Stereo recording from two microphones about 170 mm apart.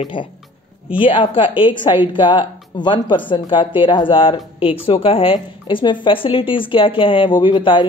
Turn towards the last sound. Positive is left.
turn(degrees=30)  # may be behind; listen again after turning